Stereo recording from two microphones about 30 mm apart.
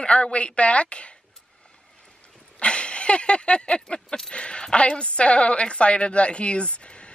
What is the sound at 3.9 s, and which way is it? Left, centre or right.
Speech, left.